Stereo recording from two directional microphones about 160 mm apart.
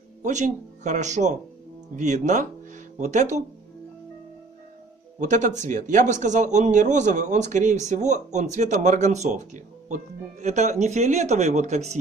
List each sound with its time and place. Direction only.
0.2 s speech: 50° right (ahead or behind)
5.2 s speech: 50° right (ahead or behind)